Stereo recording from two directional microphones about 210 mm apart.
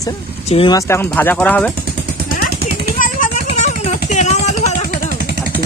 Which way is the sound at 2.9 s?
40° left (ahead or behind).